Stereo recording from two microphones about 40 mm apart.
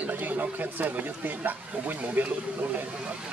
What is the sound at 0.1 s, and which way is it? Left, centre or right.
Speech, right.